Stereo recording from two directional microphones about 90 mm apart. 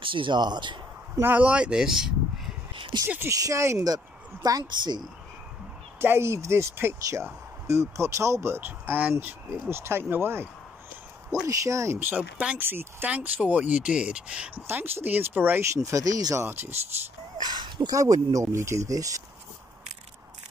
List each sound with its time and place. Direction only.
0.0 s speech: 70° right (ahead or behind)
1.2 s speech: 15° right (ahead or behind)
2.7 s a sound: 70° right (ahead or behind)
3.3 s speech: 40° right (ahead or behind)
5.9 s speech: 30° right (ahead or behind)
11.4 s speech: 35° right (ahead or behind)
12.0 s speech: 20° right (ahead or behind)
14.7 s speech: 25° right (ahead or behind)
15.7 s speech: 35° right (ahead or behind)
17.4 s a sound: 55° right (ahead or behind)
17.9 s speech: 40° right (ahead or behind)